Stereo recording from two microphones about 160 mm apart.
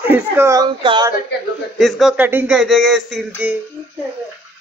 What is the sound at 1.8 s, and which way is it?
Speech, centre (ahead or behind).